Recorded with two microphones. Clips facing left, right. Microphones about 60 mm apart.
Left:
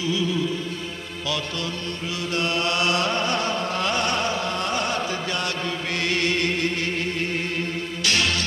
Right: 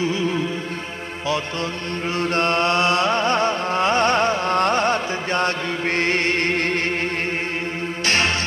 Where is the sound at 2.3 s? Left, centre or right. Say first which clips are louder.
Right 4 dB; right.